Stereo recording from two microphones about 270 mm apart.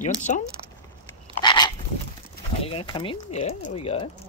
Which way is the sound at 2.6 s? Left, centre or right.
Centre.